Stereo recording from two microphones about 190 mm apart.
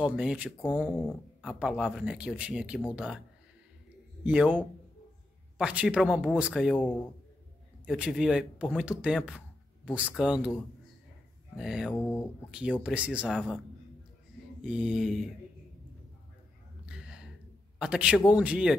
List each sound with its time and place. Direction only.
0.0 s speech: 5° right (ahead or behind)
4.2 s speech: 5° right (ahead or behind)
7.8 s speech: 5° right (ahead or behind)
14.6 s speech: 5° right (ahead or behind)
16.8 s a sound: 5° right (ahead or behind)
17.7 s speech: 5° right (ahead or behind)